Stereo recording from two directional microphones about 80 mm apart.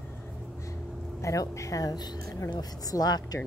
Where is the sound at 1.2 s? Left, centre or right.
Left.